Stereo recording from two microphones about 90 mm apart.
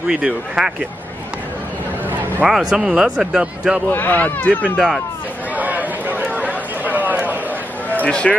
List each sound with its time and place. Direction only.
0.1 s speech: 10° right (ahead or behind)
2.4 s speech: 5° right (ahead or behind)
3.9 s speech: 20° left (ahead or behind)
4.7 s speech: 5° right (ahead or behind)
5.6 s a sound: 20° right (ahead or behind)
7.9 s speech: 15° left (ahead or behind)